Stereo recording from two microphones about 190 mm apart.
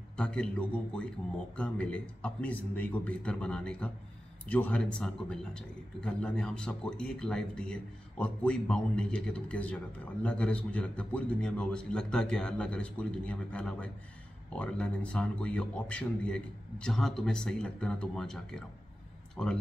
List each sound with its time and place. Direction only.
0.2 s a man's voice: 5° left (ahead or behind)